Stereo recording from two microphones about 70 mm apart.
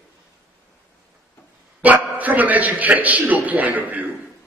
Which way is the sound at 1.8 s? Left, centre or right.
Right.